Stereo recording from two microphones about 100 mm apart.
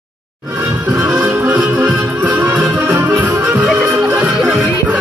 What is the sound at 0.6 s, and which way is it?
Music, 10° right (ahead or behind).